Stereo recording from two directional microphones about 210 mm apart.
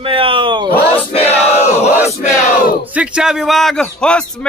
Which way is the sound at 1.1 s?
30° left (ahead or behind).